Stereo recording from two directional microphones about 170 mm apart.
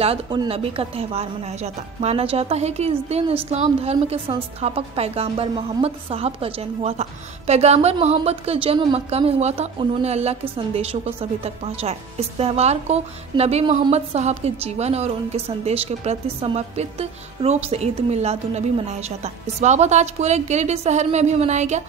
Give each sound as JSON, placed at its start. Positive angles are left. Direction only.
{"t": 0.0, "sound": "a woman's voice", "side_deg": -35}